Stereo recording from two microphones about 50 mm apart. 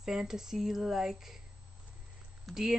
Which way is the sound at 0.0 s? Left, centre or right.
Centre.